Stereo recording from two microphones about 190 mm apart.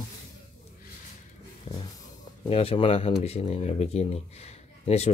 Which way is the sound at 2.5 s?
30° left (ahead or behind).